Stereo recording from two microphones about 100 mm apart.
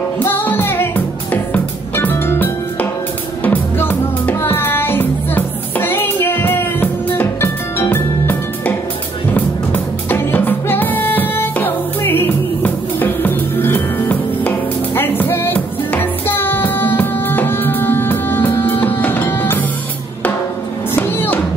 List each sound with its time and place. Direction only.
0.2 s music: 20° left (ahead or behind)
10.0 s music: 20° left (ahead or behind)
20.9 s music: 20° left (ahead or behind)